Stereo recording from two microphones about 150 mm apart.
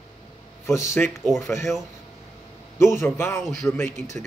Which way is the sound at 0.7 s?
20° left (ahead or behind).